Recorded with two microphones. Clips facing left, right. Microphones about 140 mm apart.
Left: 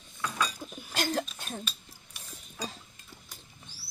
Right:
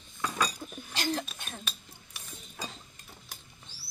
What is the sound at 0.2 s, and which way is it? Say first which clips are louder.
Cutlery: right 1 dB; 40° right (ahead or behind).